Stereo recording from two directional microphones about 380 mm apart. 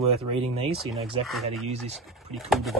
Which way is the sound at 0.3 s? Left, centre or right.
Centre.